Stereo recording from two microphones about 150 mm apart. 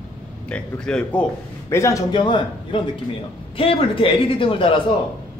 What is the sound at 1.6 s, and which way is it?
A man's voice, 20° left (ahead or behind).